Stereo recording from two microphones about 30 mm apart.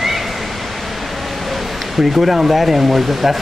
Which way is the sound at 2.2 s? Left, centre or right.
Centre.